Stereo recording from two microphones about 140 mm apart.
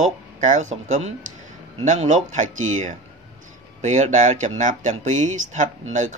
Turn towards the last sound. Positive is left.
turn(degrees=-60)  # may be behind; listen again after turning